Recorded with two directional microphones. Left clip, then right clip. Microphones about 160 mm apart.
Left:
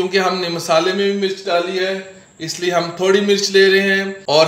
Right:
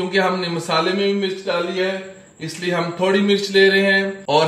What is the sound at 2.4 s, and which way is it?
Speech, 40° left (ahead or behind).